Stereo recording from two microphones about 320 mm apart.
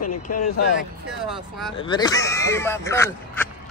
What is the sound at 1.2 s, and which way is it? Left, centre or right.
Speech, centre.